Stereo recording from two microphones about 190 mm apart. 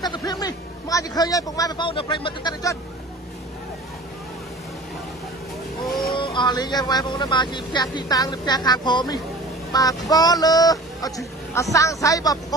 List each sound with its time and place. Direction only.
0.0 s speech: 20° left (ahead or behind)
5.9 s speech: centre (ahead or behind)
6.1 s speech: 25° left (ahead or behind)